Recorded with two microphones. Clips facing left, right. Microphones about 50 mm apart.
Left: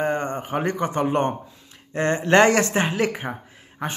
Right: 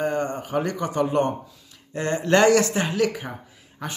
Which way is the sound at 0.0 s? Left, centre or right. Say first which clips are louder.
Left 1 dB; left.